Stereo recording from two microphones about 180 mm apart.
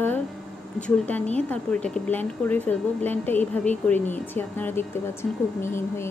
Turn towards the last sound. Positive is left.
turn(degrees=15)  # may be behind; listen again after turning